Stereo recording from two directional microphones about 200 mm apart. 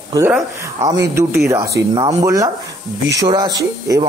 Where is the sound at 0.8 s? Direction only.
15° right (ahead or behind).